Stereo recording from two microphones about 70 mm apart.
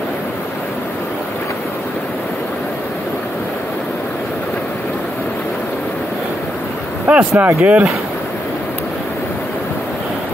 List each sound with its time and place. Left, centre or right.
7.1 s speech: centre